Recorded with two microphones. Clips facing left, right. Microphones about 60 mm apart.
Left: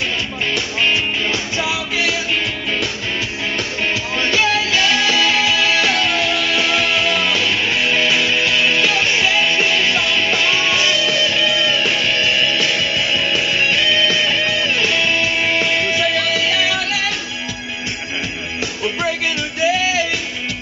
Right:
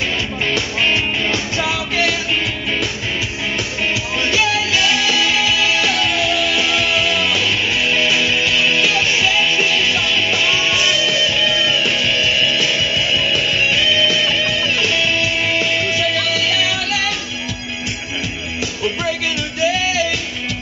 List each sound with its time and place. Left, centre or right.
0.5 s music: centre
4.2 s music: centre
5.2 s music: left
7.3 s music: centre
8.8 s music: centre
18.8 s music: centre